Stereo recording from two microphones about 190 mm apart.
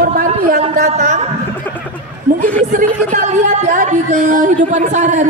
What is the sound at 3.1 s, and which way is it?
Speech, 40° right (ahead or behind).